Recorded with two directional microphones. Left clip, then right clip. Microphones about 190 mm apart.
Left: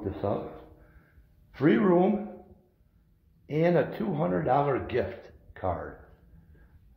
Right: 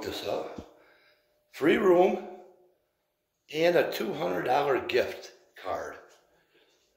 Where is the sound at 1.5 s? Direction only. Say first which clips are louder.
Right 1 dB; 20° right (ahead or behind).